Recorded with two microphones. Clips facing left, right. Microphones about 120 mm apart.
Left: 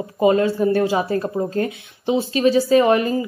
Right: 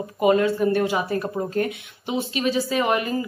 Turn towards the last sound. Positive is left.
turn(degrees=30)  # may be behind; listen again after turning